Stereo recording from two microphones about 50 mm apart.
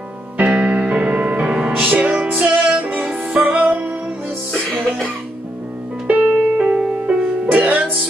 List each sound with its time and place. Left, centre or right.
0.4 s music: right
4.6 s music: centre
6.0 s music: right